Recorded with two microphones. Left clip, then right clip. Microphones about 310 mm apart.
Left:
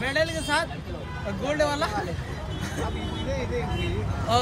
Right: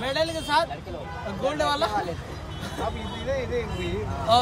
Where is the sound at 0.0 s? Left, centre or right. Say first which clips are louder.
Even; centre.